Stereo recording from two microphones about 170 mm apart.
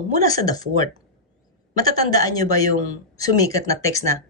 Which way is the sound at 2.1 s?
20° left (ahead or behind).